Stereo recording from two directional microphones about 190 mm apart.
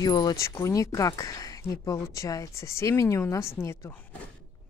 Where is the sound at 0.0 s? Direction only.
20° left (ahead or behind).